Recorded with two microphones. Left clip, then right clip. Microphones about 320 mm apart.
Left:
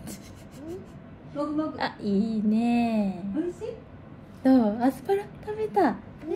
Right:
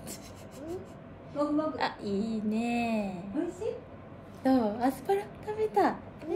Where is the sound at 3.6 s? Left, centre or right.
Right.